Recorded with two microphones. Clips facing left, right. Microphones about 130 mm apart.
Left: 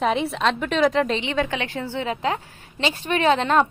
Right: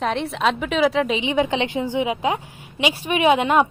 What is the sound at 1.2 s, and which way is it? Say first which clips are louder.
A woman's voice: right 4 dB; 15° right (ahead or behind).